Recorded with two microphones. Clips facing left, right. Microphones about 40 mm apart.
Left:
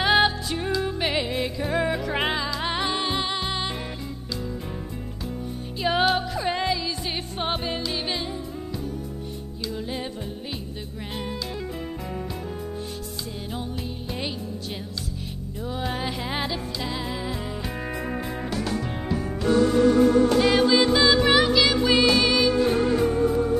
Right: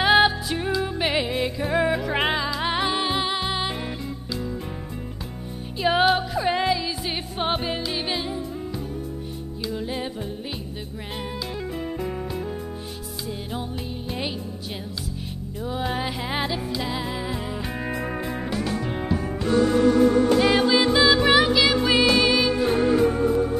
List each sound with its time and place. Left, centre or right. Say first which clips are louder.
0.0 s music: right 2 dB; centre
5.8 s music: right 2 dB; centre
9.6 s music: right 2 dB; centre
13.5 s music: right 1 dB; centre
15.6 s music: right 2 dB; centre